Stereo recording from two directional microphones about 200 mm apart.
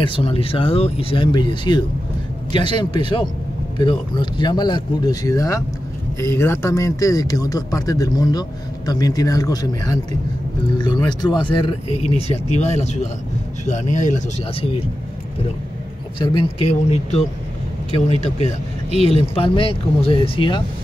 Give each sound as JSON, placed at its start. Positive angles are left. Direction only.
{"t": 0.0, "sound": "speech", "side_deg": 25}
{"t": 16.2, "sound": "speech", "side_deg": 25}